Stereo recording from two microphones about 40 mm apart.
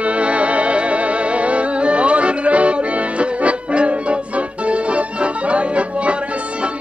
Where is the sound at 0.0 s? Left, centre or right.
Right.